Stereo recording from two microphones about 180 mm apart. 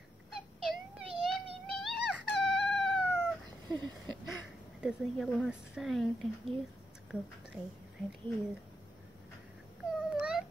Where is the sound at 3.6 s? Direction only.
25° right (ahead or behind).